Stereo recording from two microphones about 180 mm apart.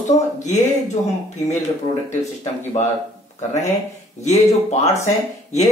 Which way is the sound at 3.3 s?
40° left (ahead or behind).